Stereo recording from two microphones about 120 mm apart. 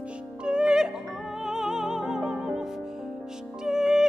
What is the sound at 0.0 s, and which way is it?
Music, 10° right (ahead or behind).